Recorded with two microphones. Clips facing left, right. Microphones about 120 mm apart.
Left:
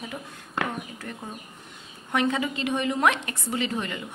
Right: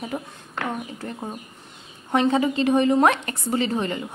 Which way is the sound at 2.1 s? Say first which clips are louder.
Right 6 dB; 30° right (ahead or behind).